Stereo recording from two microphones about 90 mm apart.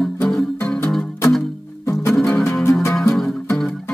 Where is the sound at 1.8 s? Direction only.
30° left (ahead or behind).